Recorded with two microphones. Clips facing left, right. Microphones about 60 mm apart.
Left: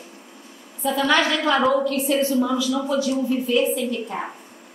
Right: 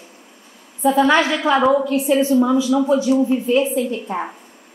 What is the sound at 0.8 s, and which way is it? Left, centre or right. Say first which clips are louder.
A woman's voice: right 5 dB; right.